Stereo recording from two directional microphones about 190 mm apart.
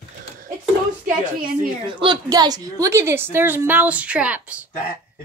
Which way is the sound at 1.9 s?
25° right (ahead or behind).